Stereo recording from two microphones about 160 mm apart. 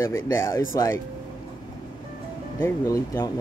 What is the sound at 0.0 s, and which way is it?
Speech, 15° left (ahead or behind).